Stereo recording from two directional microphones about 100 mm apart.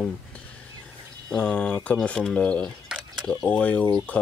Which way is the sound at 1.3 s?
10° left (ahead or behind).